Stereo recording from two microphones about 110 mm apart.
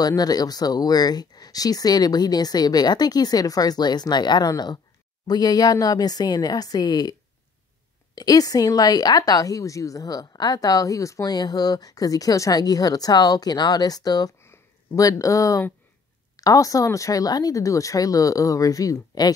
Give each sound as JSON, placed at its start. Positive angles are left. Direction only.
{"t": 0.0, "sound": "speech", "side_deg": 35}
{"t": 14.4, "sound": "a sound", "side_deg": 25}
{"t": 16.3, "sound": "speech", "side_deg": 30}